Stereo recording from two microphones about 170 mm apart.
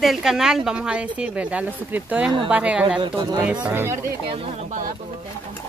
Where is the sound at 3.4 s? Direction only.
5° right (ahead or behind).